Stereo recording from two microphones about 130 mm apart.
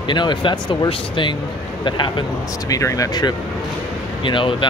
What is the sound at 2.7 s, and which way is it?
Speech, 25° left (ahead or behind).